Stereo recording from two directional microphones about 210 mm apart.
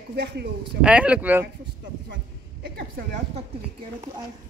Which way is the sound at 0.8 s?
5° right (ahead or behind).